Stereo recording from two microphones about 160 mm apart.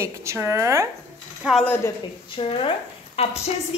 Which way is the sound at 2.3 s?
35° left (ahead or behind).